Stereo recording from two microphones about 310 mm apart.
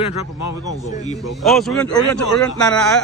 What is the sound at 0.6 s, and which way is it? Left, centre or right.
Speech, centre.